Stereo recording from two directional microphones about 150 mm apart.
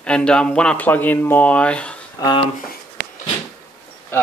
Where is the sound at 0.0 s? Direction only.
5° left (ahead or behind).